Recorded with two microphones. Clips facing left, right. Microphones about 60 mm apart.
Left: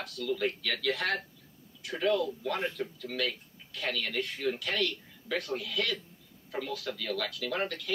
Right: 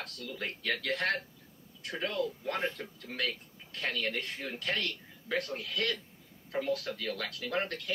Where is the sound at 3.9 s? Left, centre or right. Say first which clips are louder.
Left 1 dB; right.